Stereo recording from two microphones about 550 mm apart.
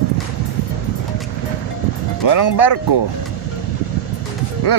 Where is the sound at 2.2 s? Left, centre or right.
Left.